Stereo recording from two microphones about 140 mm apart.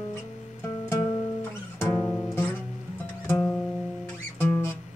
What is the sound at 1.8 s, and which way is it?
Music, 20° left (ahead or behind).